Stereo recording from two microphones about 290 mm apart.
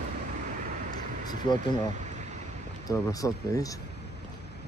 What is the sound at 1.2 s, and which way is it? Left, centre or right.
Speech, centre.